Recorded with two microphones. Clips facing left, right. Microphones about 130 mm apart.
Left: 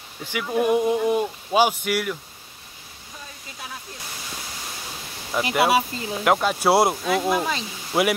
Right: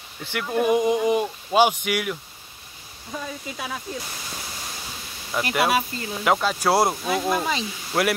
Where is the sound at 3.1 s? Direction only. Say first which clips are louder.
Right 11 dB; 90° right.